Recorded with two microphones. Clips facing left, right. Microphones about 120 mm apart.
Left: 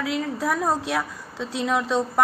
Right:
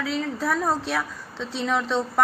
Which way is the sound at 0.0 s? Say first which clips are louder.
Left 1 dB; 10° left (ahead or behind).